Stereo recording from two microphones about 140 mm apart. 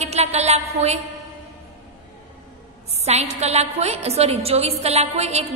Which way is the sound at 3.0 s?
50° right (ahead or behind).